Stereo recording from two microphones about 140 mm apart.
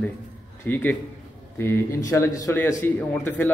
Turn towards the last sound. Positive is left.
turn(degrees=15)  # may be behind; listen again after turning